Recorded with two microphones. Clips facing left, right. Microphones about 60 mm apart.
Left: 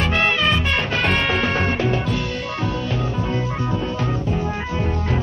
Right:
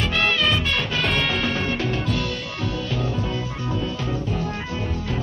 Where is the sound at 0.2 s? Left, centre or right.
Left.